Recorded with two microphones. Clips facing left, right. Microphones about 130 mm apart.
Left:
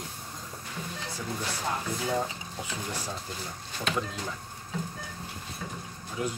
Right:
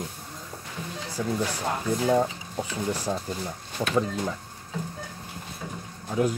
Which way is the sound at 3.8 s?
35° right (ahead or behind).